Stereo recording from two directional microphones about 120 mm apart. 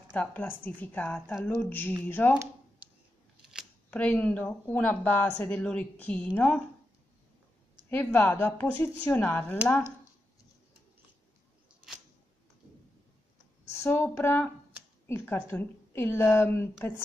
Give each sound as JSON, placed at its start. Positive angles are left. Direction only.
{"t": 0.1, "sound": "speech", "side_deg": 15}
{"t": 2.8, "sound": "a sound", "side_deg": -15}
{"t": 3.9, "sound": "speech", "side_deg": 10}
{"t": 7.9, "sound": "speech", "side_deg": 15}
{"t": 13.8, "sound": "a woman's voice", "side_deg": 20}